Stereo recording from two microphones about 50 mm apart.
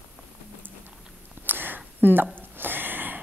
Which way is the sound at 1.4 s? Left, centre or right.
Right.